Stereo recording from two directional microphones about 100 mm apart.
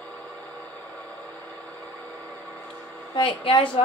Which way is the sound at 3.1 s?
60° left (ahead or behind).